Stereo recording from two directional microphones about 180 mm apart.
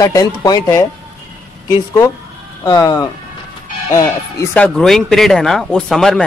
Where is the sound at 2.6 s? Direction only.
20° left (ahead or behind).